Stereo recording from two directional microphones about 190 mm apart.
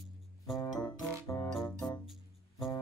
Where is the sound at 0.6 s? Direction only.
15° left (ahead or behind).